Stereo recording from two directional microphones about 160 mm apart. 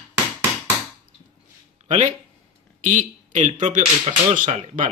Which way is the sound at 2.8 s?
50° right (ahead or behind).